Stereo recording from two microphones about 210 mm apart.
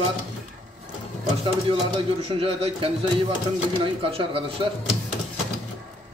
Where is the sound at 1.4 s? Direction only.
25° right (ahead or behind).